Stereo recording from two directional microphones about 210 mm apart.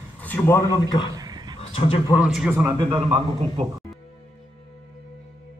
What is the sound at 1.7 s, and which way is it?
Speech, 25° left (ahead or behind).